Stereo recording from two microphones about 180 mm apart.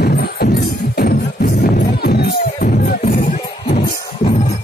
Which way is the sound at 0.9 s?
55° left (ahead or behind).